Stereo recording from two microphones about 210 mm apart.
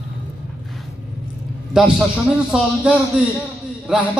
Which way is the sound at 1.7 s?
5° right (ahead or behind).